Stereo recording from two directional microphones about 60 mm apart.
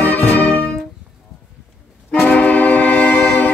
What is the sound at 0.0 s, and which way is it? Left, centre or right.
Music, left.